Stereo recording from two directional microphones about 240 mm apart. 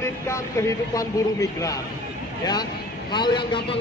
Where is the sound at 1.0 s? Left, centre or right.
Centre.